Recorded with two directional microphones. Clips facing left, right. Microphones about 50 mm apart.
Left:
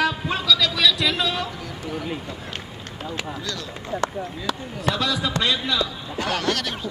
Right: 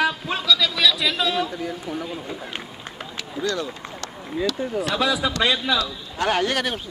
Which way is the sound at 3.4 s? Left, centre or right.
Right.